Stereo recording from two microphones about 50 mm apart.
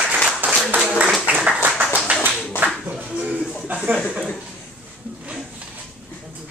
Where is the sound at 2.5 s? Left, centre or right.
Right.